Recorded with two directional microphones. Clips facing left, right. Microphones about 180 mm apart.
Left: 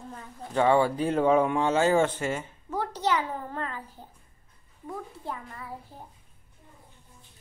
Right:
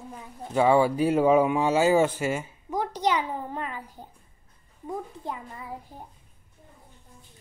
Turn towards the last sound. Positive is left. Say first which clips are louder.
# right 2 dB
turn(degrees=-15)  # may be behind; listen again after turning